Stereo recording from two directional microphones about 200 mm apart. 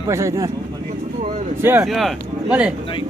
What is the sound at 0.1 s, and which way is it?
Speech, 15° right (ahead or behind).